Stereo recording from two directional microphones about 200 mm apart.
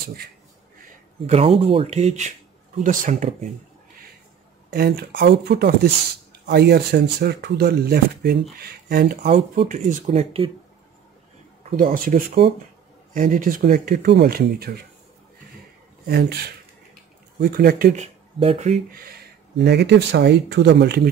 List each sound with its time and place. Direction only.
1.2 s speech: 30° right (ahead or behind)
4.7 s speech: 50° right (ahead or behind)
9.7 s speech: 40° right (ahead or behind)
11.9 s speech: 45° right (ahead or behind)
16.1 s speech: 50° right (ahead or behind); by 18.7 s 30° right (ahead or behind)
19.5 s speech: 55° right (ahead or behind)